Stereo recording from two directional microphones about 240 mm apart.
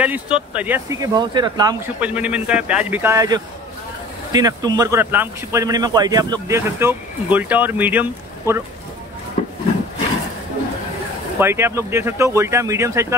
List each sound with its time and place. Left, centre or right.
0.0 s a man's voice: centre
9.4 s a sound: left
11.3 s a man's voice: centre